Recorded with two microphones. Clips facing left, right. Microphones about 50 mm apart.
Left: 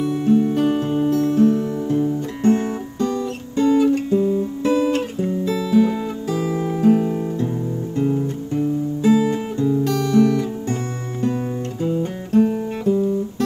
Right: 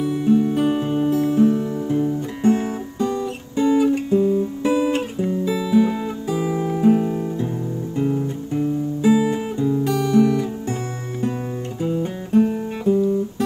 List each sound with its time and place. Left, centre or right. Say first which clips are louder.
0.0 s music: left 1 dB; centre
1.2 s music: left 1 dB; centre
4.4 s guitar: left 1 dB; centre
5.5 s music: left 1 dB; centre
6.8 s guitar: left 1 dB; centre
8.0 s music: left 1 dB; centre
11.8 s music: even; centre